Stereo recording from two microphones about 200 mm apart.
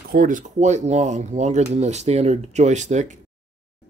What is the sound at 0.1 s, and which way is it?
Speech, 40° right (ahead or behind).